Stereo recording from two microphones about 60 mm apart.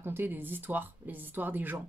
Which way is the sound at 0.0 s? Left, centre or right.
Right.